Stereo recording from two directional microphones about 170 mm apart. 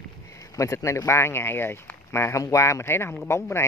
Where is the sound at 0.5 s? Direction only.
15° left (ahead or behind).